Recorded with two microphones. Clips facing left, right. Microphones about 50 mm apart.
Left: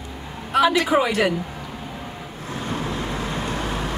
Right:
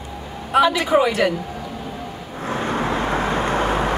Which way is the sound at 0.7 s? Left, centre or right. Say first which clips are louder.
Right 2 dB; centre.